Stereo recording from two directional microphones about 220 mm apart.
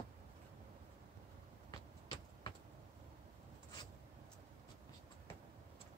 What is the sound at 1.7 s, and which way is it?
Vehicle, 20° left (ahead or behind).